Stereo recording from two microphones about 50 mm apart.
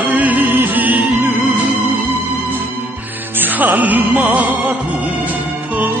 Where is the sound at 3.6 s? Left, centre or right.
Right.